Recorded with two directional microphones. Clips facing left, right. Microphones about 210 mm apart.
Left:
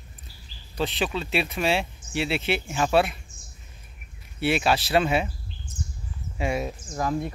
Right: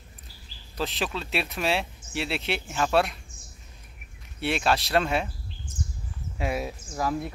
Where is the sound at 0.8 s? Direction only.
Centre (ahead or behind).